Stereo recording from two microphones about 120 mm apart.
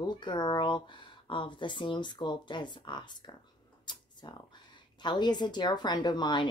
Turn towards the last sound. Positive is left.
turn(degrees=40)  # may be behind; listen again after turning